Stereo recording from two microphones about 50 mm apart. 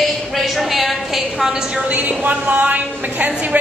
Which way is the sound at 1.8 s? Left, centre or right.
Right.